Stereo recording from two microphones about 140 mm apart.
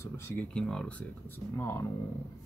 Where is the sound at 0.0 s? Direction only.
10° left (ahead or behind).